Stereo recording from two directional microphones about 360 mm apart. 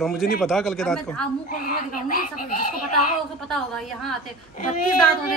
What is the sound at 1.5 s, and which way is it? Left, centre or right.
Speech, left.